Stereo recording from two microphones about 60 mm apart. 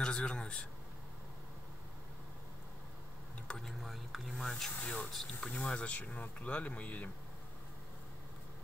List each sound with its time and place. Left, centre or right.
0.0 s a man's voice: centre
3.4 s speech: centre
4.8 s speech: centre